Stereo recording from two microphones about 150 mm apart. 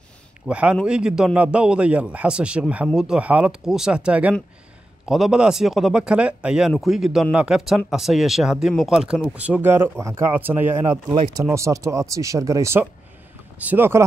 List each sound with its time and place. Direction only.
0.5 s a man's voice: 10° right (ahead or behind)
11.1 s speech: 30° right (ahead or behind)
11.5 s a man's voice: 20° right (ahead or behind)